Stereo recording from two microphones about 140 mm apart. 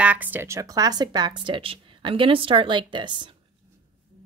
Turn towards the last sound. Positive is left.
turn(degrees=-35)  # may be behind; listen again after turning